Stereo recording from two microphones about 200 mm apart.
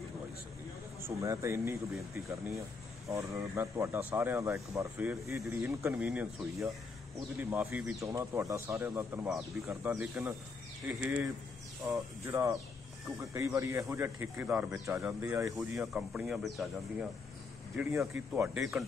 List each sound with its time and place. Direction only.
1.0 s speech: 15° right (ahead or behind)
18.3 s speech: 5° right (ahead or behind)